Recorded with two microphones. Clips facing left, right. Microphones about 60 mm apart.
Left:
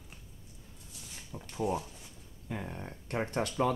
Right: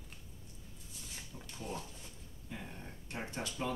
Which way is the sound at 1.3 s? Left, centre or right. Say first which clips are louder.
Left 6 dB; left.